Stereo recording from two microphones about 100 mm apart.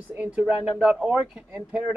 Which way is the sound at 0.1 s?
15° right (ahead or behind).